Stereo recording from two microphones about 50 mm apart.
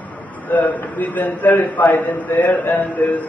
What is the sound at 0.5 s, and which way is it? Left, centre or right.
A man's voice, left.